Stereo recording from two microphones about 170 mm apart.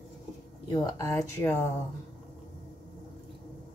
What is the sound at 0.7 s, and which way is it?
Speech, 25° left (ahead or behind).